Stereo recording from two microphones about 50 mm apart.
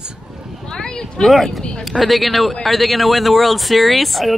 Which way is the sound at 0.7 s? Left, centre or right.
Centre.